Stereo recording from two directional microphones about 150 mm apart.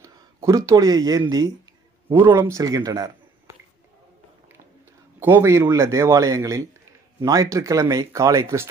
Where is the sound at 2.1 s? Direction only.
15° right (ahead or behind).